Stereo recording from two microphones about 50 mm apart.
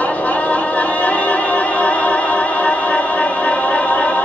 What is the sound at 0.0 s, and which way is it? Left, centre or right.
Music, left.